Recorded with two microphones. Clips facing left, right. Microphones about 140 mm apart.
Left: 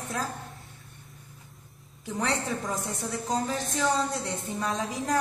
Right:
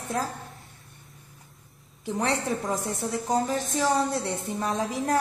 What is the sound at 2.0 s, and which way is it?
Speech, 25° right (ahead or behind).